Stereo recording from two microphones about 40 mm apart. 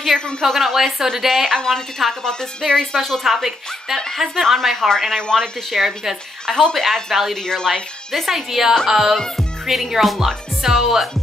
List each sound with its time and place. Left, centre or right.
0.0 s a woman's voice: centre
2.9 s a woman's voice: centre
5.7 s speech: centre
6.4 s speech: centre
7.4 s a woman's voice: centre
8.5 s music: centre
9.1 s a woman's voice: centre
9.7 s speech: centre